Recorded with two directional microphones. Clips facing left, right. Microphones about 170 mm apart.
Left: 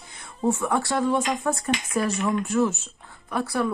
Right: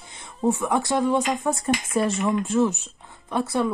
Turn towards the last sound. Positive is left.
turn(degrees=-25)  # may be behind; listen again after turning